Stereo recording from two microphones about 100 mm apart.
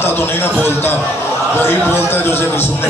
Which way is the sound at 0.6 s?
25° left (ahead or behind).